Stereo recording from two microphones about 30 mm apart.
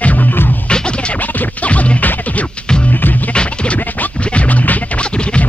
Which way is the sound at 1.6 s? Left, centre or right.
Left.